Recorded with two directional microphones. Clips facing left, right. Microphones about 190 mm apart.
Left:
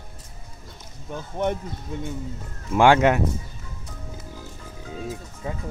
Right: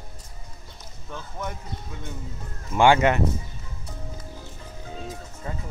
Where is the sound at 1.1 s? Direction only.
25° left (ahead or behind).